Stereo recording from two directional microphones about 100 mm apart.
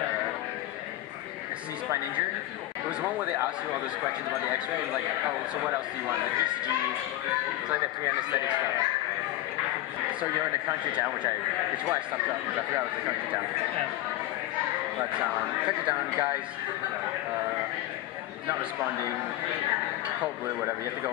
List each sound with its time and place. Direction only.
3.0 s speech: 15° right (ahead or behind)
11.7 s speech: 15° right (ahead or behind)
15.1 s speech: 15° right (ahead or behind)
20.4 s speech: 30° right (ahead or behind)